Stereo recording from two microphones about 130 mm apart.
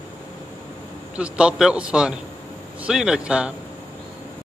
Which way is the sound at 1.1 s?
10° right (ahead or behind).